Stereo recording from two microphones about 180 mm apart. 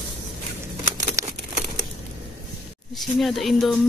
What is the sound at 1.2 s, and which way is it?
Crumpling, 15° right (ahead or behind).